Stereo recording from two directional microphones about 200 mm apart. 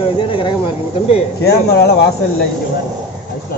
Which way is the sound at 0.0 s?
25° left (ahead or behind).